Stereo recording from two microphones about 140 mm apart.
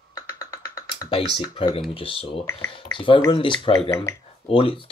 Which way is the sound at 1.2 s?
40° left (ahead or behind).